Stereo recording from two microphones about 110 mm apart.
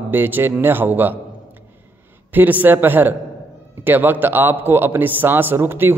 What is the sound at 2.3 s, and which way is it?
A man's voice, 15° right (ahead or behind).